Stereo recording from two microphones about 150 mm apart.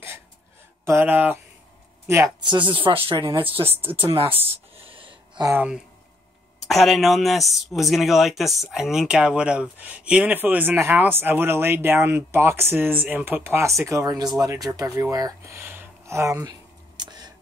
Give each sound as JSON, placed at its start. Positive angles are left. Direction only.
{"t": 0.8, "sound": "a man's voice", "side_deg": -15}
{"t": 2.4, "sound": "speech", "side_deg": -30}
{"t": 3.6, "sound": "a man's voice", "side_deg": -15}
{"t": 3.9, "sound": "speech", "side_deg": -35}
{"t": 4.7, "sound": "a sound", "side_deg": -35}
{"t": 5.4, "sound": "a man's voice", "side_deg": -15}
{"t": 6.6, "sound": "a man's voice", "side_deg": 0}
{"t": 16.9, "sound": "a sound", "side_deg": -30}